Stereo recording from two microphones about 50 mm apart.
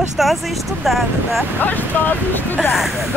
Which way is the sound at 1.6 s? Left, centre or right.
Left.